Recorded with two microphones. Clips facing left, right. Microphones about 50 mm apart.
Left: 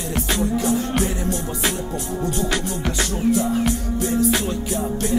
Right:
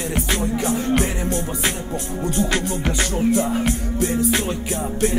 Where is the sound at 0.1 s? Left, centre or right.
Right.